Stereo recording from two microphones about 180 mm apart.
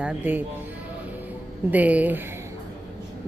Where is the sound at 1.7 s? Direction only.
10° right (ahead or behind).